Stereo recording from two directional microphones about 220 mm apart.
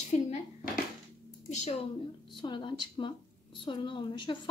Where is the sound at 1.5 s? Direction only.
30° left (ahead or behind).